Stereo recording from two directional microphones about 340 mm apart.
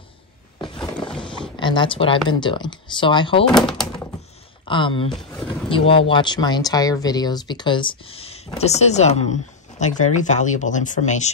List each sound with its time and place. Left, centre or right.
0.6 s a sound: centre
1.2 s speech: centre
3.5 s speech: centre
4.6 s speech: centre